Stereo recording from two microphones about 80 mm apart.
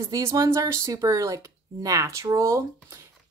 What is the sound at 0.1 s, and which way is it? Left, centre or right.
Speech, right.